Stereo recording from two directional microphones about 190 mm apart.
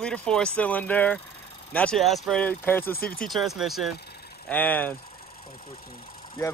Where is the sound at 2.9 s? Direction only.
50° left (ahead or behind).